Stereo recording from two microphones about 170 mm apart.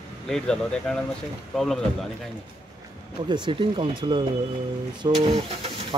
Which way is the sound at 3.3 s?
30° right (ahead or behind).